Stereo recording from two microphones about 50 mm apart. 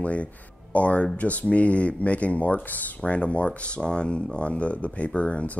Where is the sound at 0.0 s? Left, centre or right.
Left.